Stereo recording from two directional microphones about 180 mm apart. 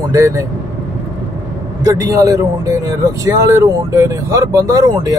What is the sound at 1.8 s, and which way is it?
Speech, 20° right (ahead or behind).